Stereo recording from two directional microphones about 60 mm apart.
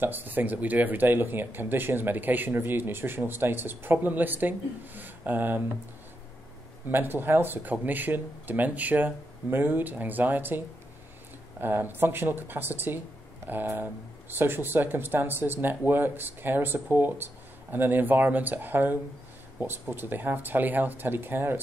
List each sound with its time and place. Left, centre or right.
0.0 s speech: right
6.9 s speech: right
11.6 s speech: right
14.3 s speech: right